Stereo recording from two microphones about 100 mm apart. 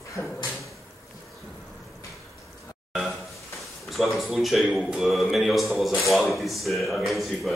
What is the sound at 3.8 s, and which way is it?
Speech, centre (ahead or behind).